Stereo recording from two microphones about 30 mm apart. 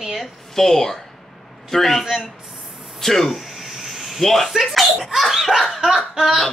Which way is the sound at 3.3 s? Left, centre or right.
Centre.